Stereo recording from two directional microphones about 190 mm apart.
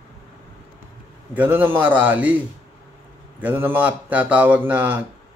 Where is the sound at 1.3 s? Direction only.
10° right (ahead or behind).